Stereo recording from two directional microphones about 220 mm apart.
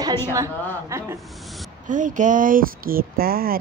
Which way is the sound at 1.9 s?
35° right (ahead or behind).